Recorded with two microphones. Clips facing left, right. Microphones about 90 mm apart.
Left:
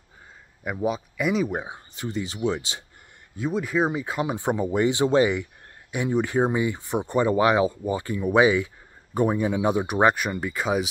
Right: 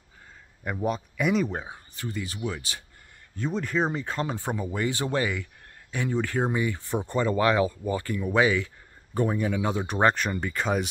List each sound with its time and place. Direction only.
0.7 s speech: 5° left (ahead or behind)
1.5 s speech: 15° left (ahead or behind)
3.3 s speech: 5° left (ahead or behind)